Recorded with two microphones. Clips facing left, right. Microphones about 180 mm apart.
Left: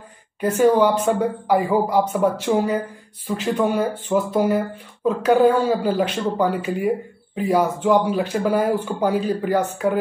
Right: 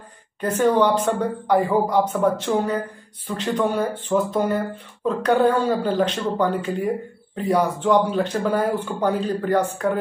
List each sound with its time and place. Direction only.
0.4 s speech: 10° left (ahead or behind)